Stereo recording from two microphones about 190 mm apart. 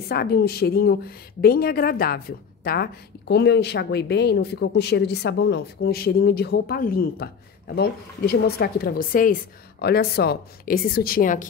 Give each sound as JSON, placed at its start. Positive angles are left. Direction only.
{"t": 0.1, "sound": "a woman's voice", "side_deg": 55}